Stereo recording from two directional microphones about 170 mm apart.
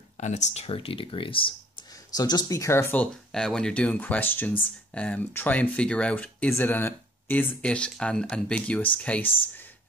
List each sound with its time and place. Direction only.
0.2 s speech: 45° left (ahead or behind); by 9.3 s 10° left (ahead or behind)